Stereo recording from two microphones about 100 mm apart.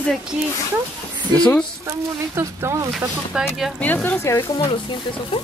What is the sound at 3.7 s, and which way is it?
Speech, 15° left (ahead or behind).